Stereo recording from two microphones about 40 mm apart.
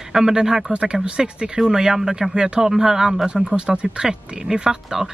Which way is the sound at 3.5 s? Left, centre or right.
Right.